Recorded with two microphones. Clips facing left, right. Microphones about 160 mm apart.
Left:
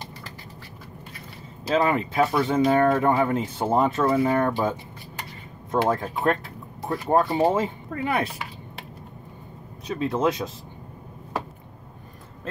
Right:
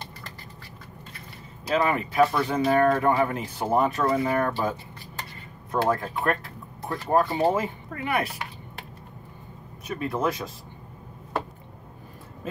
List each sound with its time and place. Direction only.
1.7 s speech: 25° left (ahead or behind)
9.9 s speech: 20° left (ahead or behind)